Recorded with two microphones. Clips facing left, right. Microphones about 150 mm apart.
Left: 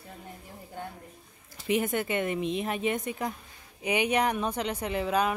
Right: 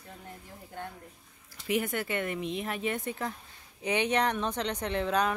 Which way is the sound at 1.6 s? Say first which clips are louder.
Left 3 dB; 20° left (ahead or behind).